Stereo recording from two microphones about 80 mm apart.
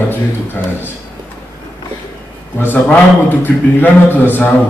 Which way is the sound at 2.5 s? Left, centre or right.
Left.